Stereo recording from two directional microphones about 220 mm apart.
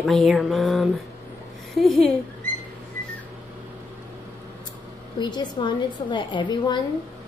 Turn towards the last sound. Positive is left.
turn(degrees=20)  # may be behind; listen again after turning